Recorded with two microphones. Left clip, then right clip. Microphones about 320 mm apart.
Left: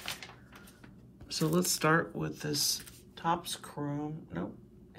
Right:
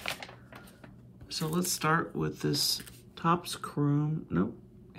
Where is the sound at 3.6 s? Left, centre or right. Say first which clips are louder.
Right 6 dB; right.